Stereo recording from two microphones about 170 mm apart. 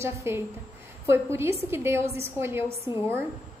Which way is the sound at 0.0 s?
15° right (ahead or behind).